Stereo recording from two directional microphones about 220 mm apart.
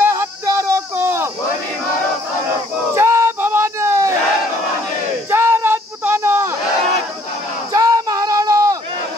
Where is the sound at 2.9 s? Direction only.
10° right (ahead or behind).